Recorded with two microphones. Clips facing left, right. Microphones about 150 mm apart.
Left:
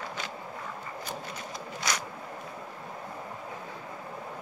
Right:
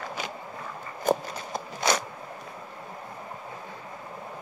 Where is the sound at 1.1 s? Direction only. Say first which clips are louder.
Right 17 dB; 45° right (ahead or behind).